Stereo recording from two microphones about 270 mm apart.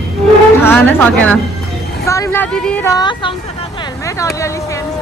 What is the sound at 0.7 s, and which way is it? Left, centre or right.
Speech, centre.